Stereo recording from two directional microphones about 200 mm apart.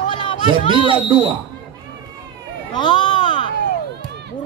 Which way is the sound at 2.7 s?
20° left (ahead or behind).